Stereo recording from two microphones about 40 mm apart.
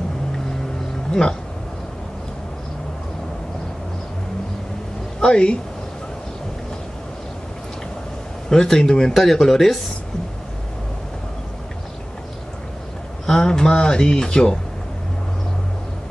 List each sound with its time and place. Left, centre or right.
5.2 s speech: left
8.5 s speech: centre
13.3 s speech: centre